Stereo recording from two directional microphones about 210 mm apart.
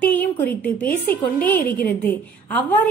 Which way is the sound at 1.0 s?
10° left (ahead or behind).